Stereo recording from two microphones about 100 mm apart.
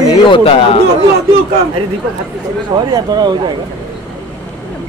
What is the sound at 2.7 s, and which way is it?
Speech, 45° right (ahead or behind).